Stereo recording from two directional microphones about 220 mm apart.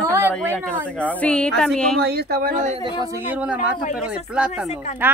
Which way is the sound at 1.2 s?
5° left (ahead or behind).